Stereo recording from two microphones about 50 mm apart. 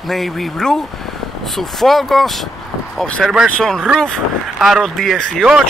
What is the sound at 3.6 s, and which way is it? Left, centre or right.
Speech, centre.